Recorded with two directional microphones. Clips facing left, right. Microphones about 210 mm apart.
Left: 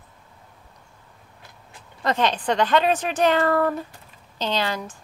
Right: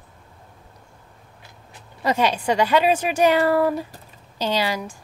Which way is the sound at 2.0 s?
10° right (ahead or behind).